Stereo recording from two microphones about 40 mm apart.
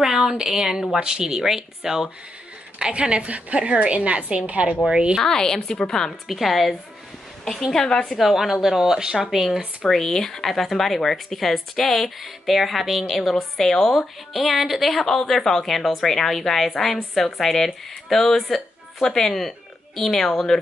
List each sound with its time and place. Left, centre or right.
0.0 s speech: centre
2.8 s a woman's voice: right
4.8 s a woman's voice: centre
5.2 s speech: centre
6.2 s speech: centre
8.2 s speech: centre
9.2 s speech: centre
9.8 s speech: centre
14.4 s speech: centre